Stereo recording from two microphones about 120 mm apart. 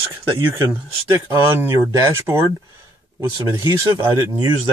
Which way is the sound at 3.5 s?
30° right (ahead or behind).